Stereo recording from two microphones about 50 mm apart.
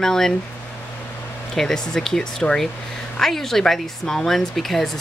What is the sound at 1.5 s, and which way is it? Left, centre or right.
Speech, centre.